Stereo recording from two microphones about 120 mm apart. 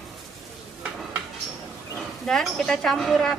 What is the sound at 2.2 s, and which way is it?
Speech, 5° left (ahead or behind).